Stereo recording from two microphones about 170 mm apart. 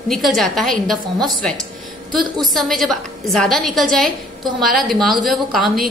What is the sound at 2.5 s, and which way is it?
A woman's voice, centre (ahead or behind).